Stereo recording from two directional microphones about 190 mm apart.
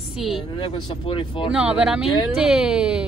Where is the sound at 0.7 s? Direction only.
25° left (ahead or behind).